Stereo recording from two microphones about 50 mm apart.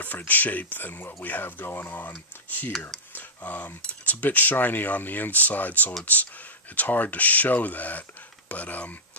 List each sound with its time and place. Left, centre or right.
0.3 s speech: left